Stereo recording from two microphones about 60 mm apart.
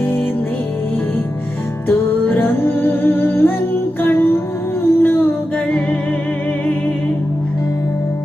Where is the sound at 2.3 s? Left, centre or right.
Left.